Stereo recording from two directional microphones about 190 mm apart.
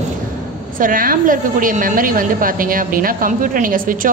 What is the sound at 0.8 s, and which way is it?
A woman's voice, 45° right (ahead or behind).